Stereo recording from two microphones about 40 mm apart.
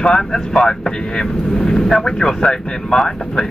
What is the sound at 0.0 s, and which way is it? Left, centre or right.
Speech, centre.